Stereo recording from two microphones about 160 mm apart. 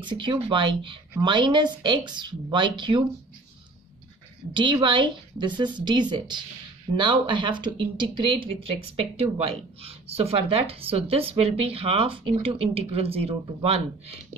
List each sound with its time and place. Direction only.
0.0 s a woman's voice: 30° right (ahead or behind)
4.6 s a woman's voice: 30° right (ahead or behind)